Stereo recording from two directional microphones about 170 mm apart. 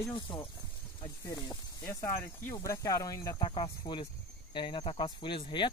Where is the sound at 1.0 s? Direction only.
20° left (ahead or behind).